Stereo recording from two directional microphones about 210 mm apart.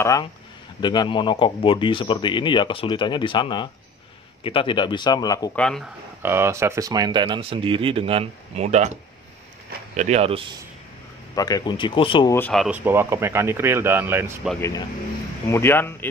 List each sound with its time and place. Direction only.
0.0 s speech: 15° left (ahead or behind)
5.6 s speech: 5° left (ahead or behind)
6.2 s speech: 15° right (ahead or behind); by 8.9 s 35° right (ahead or behind)
9.9 s speech: 30° right (ahead or behind)
11.3 s speech: 20° left (ahead or behind)
12.4 s speech: 5° left (ahead or behind)
15.4 s speech: 10° left (ahead or behind)